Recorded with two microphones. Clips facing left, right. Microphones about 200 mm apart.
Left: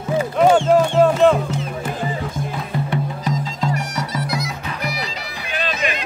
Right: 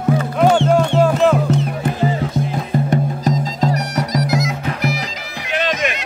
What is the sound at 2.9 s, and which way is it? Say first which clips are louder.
Music: right 4 dB; 40° right (ahead or behind).